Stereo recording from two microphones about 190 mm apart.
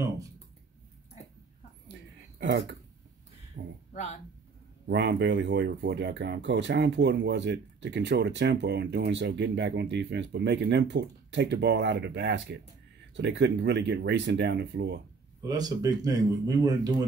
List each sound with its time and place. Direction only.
2.4 s speech: 65° right (ahead or behind)
3.9 s speech: 35° left (ahead or behind)
4.8 s speech: 65° right (ahead or behind)
15.4 s speech: 20° right (ahead or behind)